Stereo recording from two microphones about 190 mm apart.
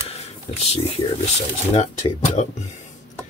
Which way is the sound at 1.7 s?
35° left (ahead or behind).